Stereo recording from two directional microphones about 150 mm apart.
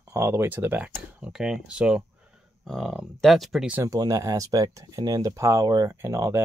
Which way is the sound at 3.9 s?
25° right (ahead or behind).